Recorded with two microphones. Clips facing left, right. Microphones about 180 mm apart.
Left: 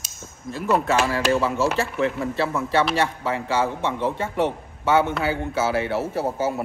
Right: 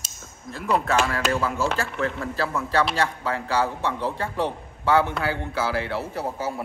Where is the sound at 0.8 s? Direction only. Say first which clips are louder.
Left 2 dB; 30° left (ahead or behind).